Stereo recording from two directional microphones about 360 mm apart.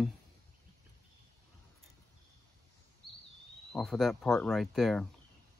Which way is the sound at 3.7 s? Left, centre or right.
Centre.